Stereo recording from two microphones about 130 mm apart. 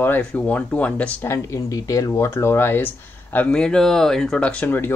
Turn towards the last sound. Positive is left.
turn(degrees=10)  # may be behind; listen again after turning